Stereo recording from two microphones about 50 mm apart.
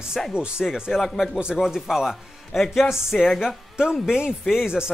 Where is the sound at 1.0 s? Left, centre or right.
Centre.